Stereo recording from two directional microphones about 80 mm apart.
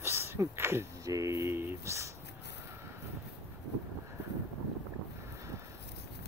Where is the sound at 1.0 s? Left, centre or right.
Right.